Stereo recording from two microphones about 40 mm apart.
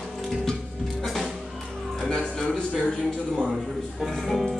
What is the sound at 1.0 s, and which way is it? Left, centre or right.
Music, centre.